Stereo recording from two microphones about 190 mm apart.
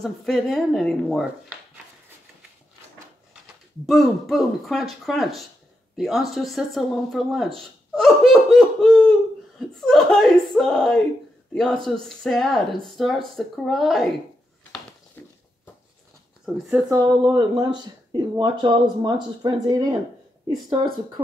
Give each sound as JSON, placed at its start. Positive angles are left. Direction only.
{"t": 0.0, "sound": "speech", "side_deg": 0}
{"t": 3.8, "sound": "speech", "side_deg": 0}
{"t": 15.2, "sound": "a sound", "side_deg": 10}
{"t": 16.9, "sound": "speech", "side_deg": -20}